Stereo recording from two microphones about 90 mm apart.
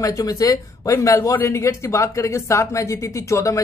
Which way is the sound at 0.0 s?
40° left (ahead or behind).